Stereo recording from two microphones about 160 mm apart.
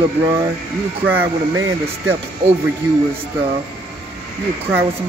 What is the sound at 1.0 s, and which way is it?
Speech, 10° right (ahead or behind).